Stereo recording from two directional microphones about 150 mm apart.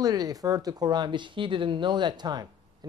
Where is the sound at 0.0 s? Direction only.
25° right (ahead or behind).